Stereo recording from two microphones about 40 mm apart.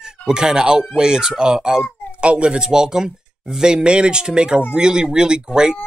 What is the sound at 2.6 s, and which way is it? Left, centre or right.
Speech, centre.